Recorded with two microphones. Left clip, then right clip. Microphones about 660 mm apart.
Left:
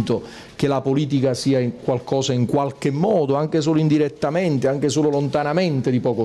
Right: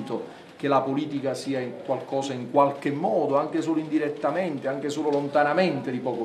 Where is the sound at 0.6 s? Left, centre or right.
Left.